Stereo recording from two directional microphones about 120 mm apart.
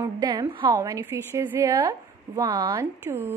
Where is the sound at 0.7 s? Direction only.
25° right (ahead or behind).